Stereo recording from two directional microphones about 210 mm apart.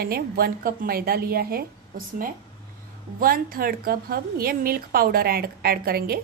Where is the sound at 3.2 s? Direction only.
45° right (ahead or behind).